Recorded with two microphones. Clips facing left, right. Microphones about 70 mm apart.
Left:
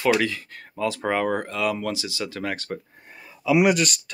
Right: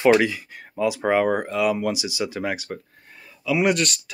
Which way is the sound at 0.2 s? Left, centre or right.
Centre.